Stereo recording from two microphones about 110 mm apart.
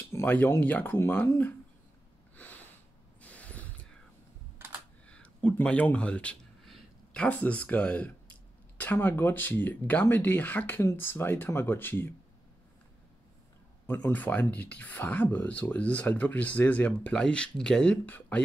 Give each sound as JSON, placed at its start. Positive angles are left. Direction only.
{"t": 0.0, "sound": "speech", "side_deg": 20}
{"t": 2.3, "sound": "sniff", "side_deg": 15}
{"t": 3.2, "sound": "mechanisms", "side_deg": 15}
{"t": 5.0, "sound": "a sound", "side_deg": 10}
{"t": 6.7, "sound": "speech", "side_deg": 10}
{"t": 13.8, "sound": "speech", "side_deg": 15}